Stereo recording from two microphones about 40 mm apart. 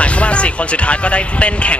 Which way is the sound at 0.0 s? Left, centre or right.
Left.